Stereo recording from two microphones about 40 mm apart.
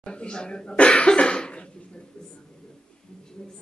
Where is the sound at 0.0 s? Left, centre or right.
Left.